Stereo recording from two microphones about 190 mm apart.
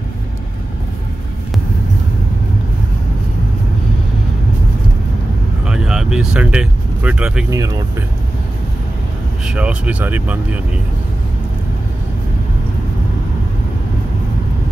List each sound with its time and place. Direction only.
5.7 s vehicle: 5° right (ahead or behind)
7.5 s speech: 20° right (ahead or behind)
9.5 s speech: 5° right (ahead or behind)